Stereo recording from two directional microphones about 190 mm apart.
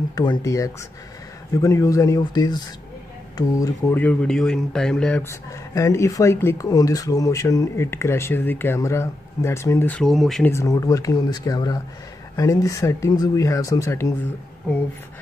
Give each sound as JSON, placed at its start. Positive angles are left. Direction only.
{"t": 0.1, "sound": "speech", "side_deg": 20}
{"t": 10.5, "sound": "speech", "side_deg": 15}